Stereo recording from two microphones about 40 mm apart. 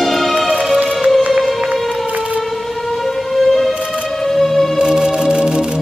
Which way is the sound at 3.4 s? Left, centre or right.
Centre.